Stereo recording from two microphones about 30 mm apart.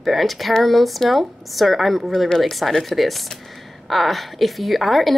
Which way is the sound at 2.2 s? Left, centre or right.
Left.